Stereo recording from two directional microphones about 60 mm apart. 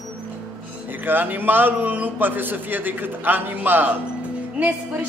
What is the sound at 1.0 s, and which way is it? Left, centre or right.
A man's voice, right.